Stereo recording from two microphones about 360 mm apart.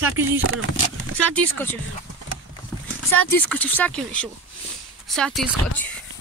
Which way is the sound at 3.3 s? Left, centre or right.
Centre.